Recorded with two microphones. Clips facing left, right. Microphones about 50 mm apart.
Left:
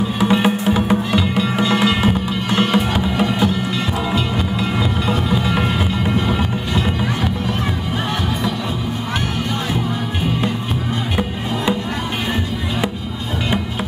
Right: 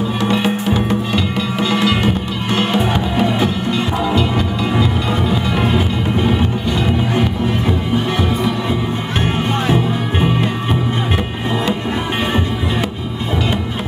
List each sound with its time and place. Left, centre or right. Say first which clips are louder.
0.2 s music: left 2 dB; centre